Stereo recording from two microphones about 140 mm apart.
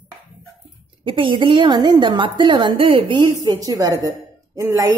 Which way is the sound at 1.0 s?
40° right (ahead or behind).